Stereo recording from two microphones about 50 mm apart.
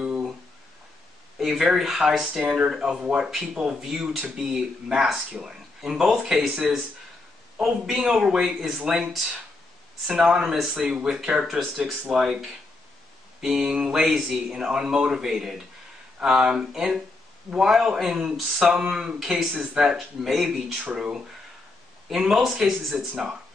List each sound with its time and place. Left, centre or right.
1.4 s speech: centre
3.0 s speech: centre
10.2 s speech: centre
22.9 s speech: centre